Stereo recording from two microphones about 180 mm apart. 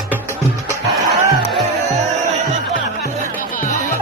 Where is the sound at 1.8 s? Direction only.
40° right (ahead or behind).